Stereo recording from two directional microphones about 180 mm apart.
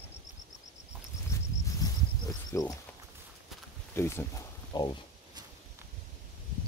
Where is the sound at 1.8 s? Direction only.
20° left (ahead or behind).